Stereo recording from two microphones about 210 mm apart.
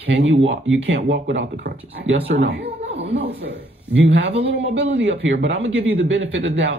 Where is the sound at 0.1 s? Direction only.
65° right (ahead or behind).